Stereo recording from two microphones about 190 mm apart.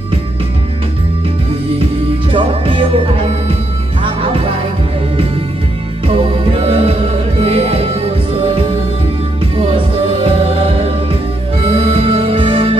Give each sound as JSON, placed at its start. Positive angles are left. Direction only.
{"t": 2.3, "sound": "music", "side_deg": -30}
{"t": 6.0, "sound": "music", "side_deg": -30}
{"t": 9.6, "sound": "music", "side_deg": -30}